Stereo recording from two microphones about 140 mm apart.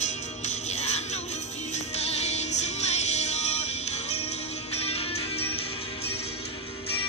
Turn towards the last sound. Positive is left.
turn(degrees=45)  # may be behind; listen again after turning